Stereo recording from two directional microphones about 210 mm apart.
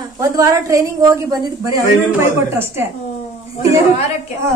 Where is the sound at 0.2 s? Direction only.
15° right (ahead or behind).